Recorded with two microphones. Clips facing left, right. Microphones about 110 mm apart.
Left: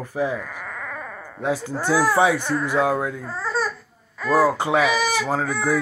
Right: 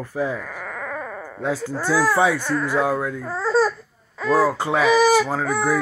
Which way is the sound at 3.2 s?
25° right (ahead or behind).